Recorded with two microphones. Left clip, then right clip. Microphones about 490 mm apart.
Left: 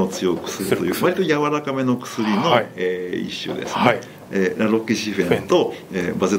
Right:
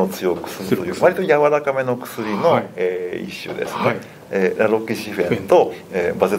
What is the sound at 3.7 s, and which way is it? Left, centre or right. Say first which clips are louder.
Speech: left 3 dB; left.